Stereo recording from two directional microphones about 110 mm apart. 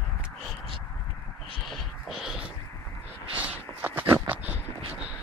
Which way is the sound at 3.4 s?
15° right (ahead or behind).